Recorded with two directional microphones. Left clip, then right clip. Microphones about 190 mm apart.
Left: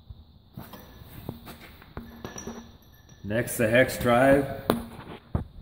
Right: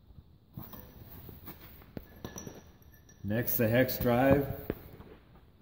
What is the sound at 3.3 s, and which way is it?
Speech, 40° right (ahead or behind).